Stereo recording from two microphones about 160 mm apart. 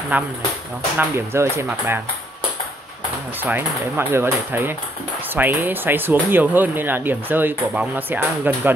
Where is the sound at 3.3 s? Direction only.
10° right (ahead or behind).